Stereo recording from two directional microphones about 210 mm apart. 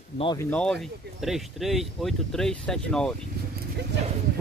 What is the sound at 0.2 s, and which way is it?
Speech, 20° left (ahead or behind).